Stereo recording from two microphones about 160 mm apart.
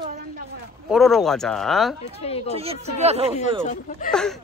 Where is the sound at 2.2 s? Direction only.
40° left (ahead or behind).